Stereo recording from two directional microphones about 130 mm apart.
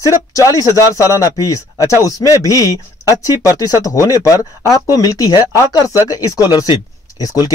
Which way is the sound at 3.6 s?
25° left (ahead or behind).